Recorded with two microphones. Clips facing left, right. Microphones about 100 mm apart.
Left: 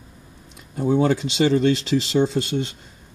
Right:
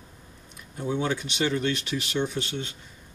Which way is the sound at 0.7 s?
45° left (ahead or behind).